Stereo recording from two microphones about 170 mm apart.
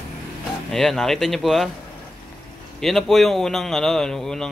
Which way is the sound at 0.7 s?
Centre (ahead or behind).